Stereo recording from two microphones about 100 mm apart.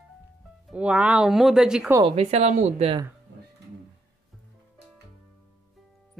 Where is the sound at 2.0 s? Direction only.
90° right.